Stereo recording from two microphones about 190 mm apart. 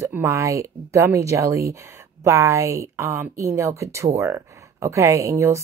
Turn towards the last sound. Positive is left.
turn(degrees=-15)  # may be behind; listen again after turning